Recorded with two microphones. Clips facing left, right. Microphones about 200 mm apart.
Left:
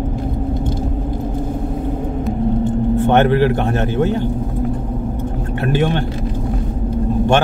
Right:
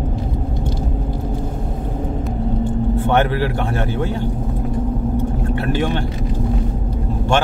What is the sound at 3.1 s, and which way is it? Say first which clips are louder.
Speech: left 5 dB; 20° left (ahead or behind).